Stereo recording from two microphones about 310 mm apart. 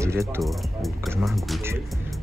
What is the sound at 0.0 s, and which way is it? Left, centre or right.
Speech, centre.